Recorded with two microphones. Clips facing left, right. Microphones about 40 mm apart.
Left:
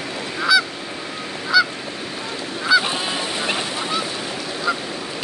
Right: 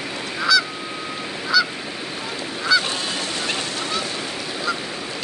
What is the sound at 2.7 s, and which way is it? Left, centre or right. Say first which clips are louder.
Goose: left 3 dB; centre.